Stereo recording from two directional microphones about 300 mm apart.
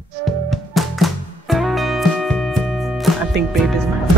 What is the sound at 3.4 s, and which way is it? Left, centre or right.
Music, right.